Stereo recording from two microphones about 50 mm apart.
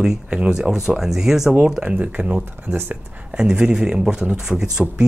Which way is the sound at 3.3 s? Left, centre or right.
Centre.